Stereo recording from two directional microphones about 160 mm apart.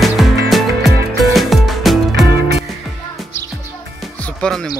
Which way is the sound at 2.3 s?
80° right.